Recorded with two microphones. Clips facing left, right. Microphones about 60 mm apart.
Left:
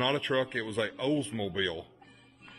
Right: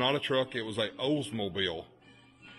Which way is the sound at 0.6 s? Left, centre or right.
Left.